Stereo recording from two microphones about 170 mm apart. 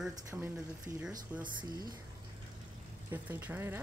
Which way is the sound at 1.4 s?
25° right (ahead or behind).